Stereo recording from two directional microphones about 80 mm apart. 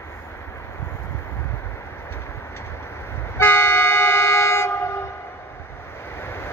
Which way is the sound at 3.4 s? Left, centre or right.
Left.